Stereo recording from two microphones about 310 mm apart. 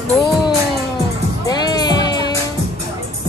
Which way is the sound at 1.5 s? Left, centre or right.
Centre.